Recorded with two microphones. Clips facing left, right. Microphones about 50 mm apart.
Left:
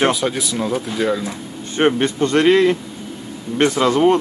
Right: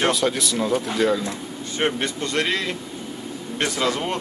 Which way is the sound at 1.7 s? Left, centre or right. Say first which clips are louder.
Left 8 dB; left.